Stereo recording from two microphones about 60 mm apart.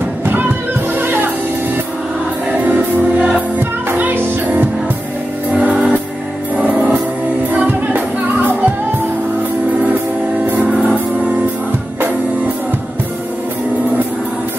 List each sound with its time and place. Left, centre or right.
0.2 s music: right
2.6 s music: right
6.6 s music: right